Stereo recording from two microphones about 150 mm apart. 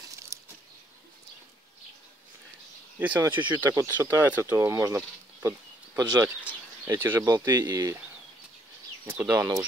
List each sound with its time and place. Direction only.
0.3 s a sound: 20° right (ahead or behind)
3.0 s speech: 10° right (ahead or behind)
9.0 s speech: 20° right (ahead or behind)